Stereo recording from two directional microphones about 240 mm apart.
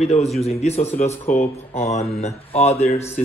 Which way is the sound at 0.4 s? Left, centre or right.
Left.